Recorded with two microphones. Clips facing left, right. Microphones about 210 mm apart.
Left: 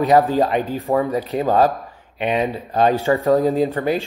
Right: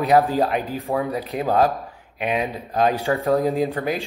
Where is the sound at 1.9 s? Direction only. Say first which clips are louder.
Left 3 dB; 5° right (ahead or behind).